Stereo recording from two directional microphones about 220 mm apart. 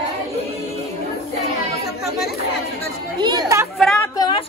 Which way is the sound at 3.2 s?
20° right (ahead or behind).